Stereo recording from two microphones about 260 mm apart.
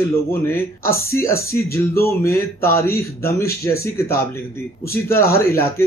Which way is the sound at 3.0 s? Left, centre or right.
Centre.